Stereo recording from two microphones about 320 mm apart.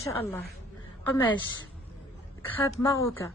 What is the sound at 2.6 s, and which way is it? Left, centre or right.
Speech, centre.